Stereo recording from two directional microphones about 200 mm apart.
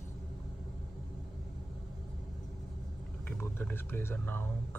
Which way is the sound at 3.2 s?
10° left (ahead or behind).